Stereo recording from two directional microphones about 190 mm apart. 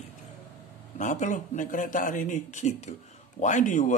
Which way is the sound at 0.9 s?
40° left (ahead or behind).